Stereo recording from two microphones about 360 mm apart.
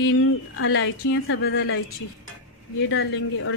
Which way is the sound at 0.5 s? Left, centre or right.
Left.